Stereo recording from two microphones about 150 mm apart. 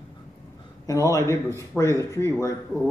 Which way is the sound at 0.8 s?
20° left (ahead or behind).